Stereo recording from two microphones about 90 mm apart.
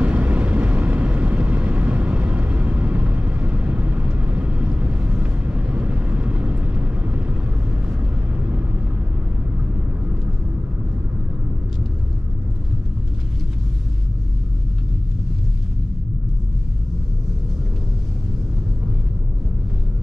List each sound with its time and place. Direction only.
0.0 s vehicle: 15° right (ahead or behind)